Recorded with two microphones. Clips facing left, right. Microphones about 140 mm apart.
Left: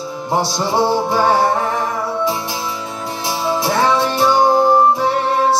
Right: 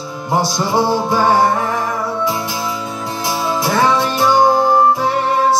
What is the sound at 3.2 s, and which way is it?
Music, 30° left (ahead or behind).